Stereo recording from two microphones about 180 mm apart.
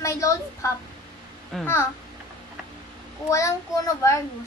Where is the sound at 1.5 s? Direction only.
Centre (ahead or behind).